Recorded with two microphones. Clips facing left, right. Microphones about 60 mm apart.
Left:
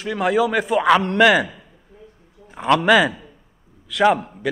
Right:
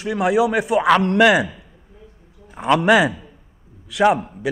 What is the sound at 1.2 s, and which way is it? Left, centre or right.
Speech, centre.